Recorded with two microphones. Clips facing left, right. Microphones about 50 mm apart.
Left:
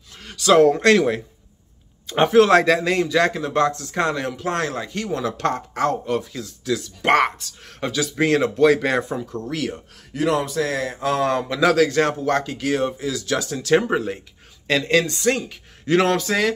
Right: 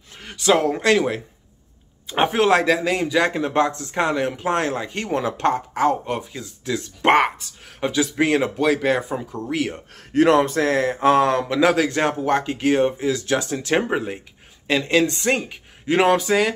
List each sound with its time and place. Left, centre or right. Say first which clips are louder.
0.2 s a sound: left 1 dB; right
0.6 s speech: left 4 dB; centre
2.0 s speech: left 3 dB; centre
5.5 s speech: right 5 dB; centre; by 7.2 s right
7.2 s speech: right 1 dB; centre
8.5 s speech: left 2 dB; centre
9.1 s speech: right 1 dB; centre
10.1 s speech: right 5 dB; right
11.4 s speech: left 1 dB; right
13.8 s speech: left 1 dB; centre
14.9 s speech: even; right